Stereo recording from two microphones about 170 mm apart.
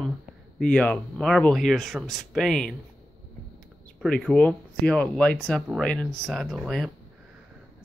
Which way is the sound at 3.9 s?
5° left (ahead or behind).